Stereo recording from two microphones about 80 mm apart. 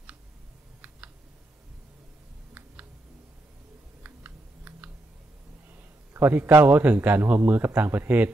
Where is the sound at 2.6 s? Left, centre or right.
Centre.